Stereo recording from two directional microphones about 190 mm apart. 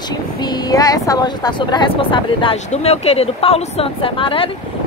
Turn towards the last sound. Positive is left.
turn(degrees=25)  # may be behind; listen again after turning